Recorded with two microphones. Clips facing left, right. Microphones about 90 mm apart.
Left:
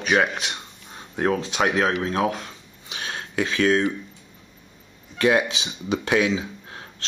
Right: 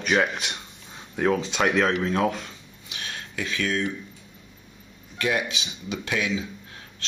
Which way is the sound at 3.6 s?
50° left (ahead or behind).